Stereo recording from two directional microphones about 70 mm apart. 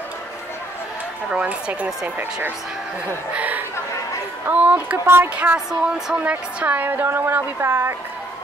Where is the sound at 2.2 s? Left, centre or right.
Right.